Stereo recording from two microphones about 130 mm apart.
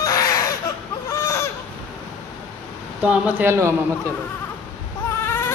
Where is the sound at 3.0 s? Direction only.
10° right (ahead or behind).